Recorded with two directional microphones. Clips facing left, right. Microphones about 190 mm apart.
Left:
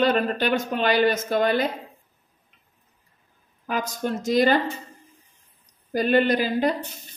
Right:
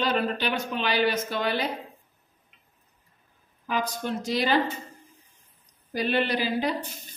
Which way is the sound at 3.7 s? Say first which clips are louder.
Left 2 dB; 45° left (ahead or behind).